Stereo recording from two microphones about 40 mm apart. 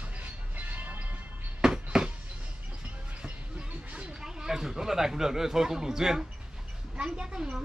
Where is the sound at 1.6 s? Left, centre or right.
Centre.